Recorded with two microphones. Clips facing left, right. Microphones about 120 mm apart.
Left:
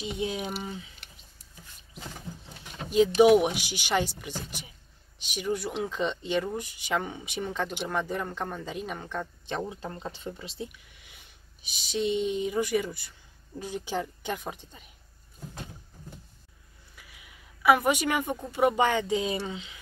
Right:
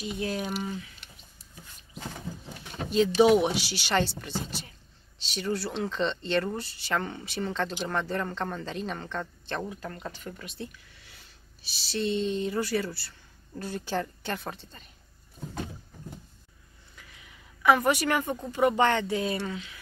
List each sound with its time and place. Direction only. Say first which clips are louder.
0.0 s speech: even; 15° left (ahead or behind)
3.2 s speech: left 1 dB; 15° left (ahead or behind)
9.7 s speech: left 1 dB; 25° left (ahead or behind)
16.9 s a woman's voice: right 1 dB; 10° left (ahead or behind)